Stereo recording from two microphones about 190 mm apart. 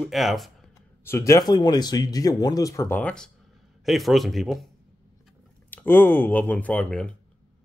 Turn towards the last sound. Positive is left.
turn(degrees=5)  # may be behind; listen again after turning